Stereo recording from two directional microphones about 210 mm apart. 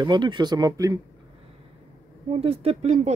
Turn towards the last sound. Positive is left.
turn(degrees=-30)  # may be behind; listen again after turning